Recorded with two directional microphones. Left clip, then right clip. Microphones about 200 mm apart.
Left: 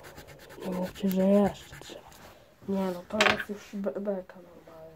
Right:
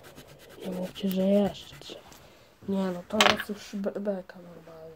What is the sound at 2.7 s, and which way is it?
Speech, 20° right (ahead or behind).